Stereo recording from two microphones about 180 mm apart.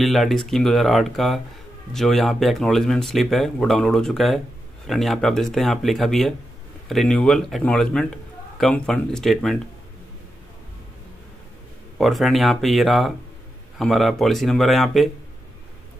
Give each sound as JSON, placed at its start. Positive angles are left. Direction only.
{"t": 0.0, "sound": "a man's voice", "side_deg": 0}
{"t": 12.0, "sound": "a man's voice", "side_deg": 0}